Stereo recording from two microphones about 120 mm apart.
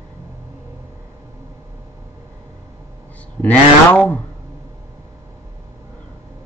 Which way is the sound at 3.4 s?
10° left (ahead or behind).